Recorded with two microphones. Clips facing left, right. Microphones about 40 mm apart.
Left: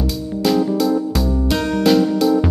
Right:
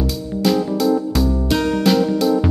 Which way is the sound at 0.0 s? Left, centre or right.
Centre.